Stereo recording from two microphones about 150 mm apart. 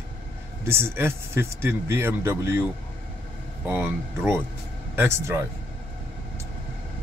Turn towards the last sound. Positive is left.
turn(degrees=-20)  # may be behind; listen again after turning